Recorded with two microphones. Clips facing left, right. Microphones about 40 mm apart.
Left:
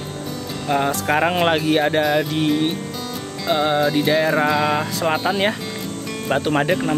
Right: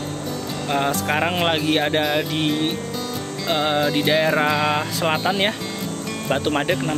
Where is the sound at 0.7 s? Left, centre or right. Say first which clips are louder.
Left 2 dB; centre.